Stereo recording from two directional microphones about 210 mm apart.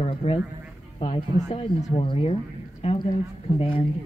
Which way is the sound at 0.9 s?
25° left (ahead or behind).